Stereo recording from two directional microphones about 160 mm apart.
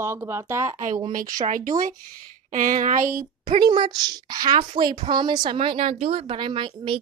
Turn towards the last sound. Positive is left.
turn(degrees=-30)  # may be behind; listen again after turning